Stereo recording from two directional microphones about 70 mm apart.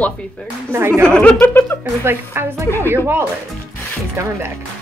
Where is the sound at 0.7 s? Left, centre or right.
Right.